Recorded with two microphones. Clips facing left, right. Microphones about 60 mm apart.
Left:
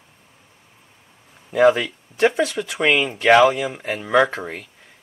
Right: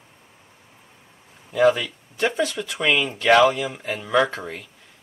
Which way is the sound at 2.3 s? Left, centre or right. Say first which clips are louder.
Left 3 dB; centre.